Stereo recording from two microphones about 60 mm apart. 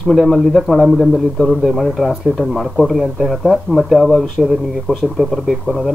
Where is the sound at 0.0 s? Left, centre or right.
Centre.